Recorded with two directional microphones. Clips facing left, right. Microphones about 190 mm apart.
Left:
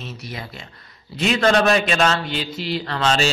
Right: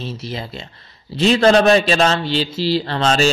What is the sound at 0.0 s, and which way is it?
A man's voice, 30° right (ahead or behind).